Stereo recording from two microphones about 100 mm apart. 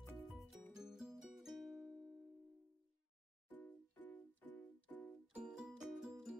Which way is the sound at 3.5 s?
15° left (ahead or behind).